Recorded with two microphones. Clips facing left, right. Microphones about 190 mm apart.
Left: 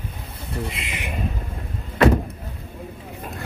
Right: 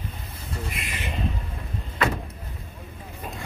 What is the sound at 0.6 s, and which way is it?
Speech, 20° left (ahead or behind).